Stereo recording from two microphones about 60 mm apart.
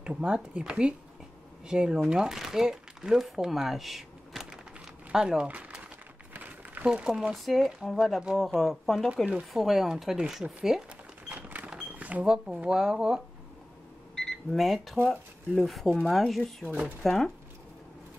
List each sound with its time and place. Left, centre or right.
0.0 s speech: centre
5.5 s a sound: right
6.9 s speech: centre
7.3 s speech: centre
11.2 s a sound: right
12.0 s cash register: right
12.3 s speech: centre
14.1 s speech: centre